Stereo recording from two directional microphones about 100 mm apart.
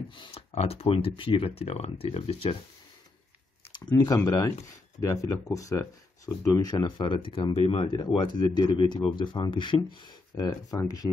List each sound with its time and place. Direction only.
0.1 s a sound: 55° left (ahead or behind)
0.5 s speech: 85° left
3.9 s speech: 30° left (ahead or behind)
7.0 s speech: 60° left (ahead or behind)
8.2 s speech: 45° left (ahead or behind)
10.3 s speech: 40° left (ahead or behind)